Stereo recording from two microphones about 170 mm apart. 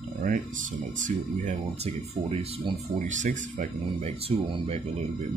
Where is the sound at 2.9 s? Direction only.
45° right (ahead or behind).